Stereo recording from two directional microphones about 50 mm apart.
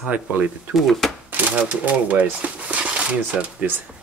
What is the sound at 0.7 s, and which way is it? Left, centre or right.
Speech, centre.